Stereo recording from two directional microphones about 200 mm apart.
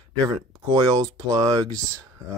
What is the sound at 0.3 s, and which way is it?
Speech, 20° right (ahead or behind).